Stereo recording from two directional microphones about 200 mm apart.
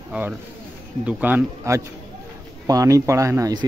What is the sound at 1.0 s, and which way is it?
Speech, 10° right (ahead or behind).